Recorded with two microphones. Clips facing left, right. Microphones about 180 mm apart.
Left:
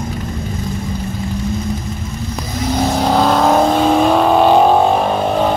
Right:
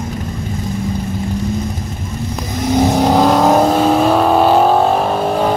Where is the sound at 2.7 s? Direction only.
15° right (ahead or behind).